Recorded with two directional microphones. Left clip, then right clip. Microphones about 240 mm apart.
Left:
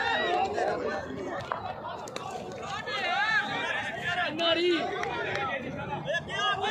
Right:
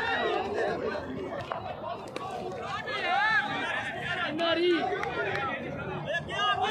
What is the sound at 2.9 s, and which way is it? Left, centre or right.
Chatter, left.